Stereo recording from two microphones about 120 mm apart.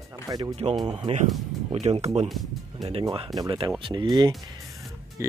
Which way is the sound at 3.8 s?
40° right (ahead or behind).